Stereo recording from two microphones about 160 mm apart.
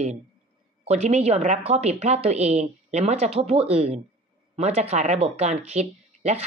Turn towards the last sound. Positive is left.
turn(degrees=-40)  # may be behind; listen again after turning